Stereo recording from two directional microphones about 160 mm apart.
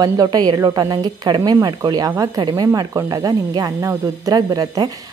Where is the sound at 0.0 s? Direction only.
25° right (ahead or behind).